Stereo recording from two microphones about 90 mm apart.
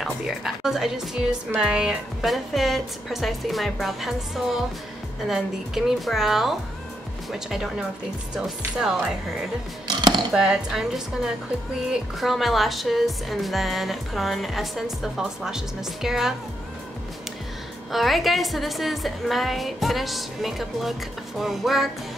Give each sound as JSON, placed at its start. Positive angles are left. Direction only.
{"t": 0.0, "sound": "speech", "side_deg": -5}
{"t": 9.8, "sound": "a sound", "side_deg": -55}
{"t": 10.3, "sound": "speech", "side_deg": -5}
{"t": 17.9, "sound": "speech", "side_deg": 0}